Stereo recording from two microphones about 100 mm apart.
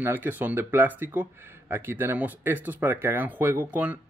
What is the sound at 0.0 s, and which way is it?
Speech, 20° right (ahead or behind).